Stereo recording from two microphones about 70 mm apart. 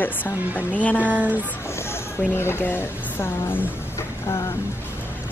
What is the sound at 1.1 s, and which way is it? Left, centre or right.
Speech, right.